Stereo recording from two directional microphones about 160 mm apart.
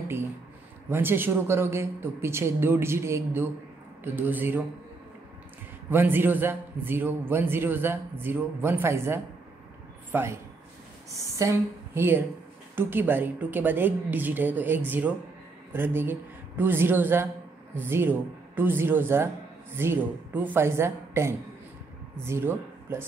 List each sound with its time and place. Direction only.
0.8 s a man's voice: 15° right (ahead or behind)
5.9 s a man's voice: 15° right (ahead or behind)